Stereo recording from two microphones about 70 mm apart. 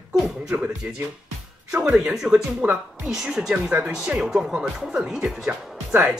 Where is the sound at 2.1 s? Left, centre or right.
Centre.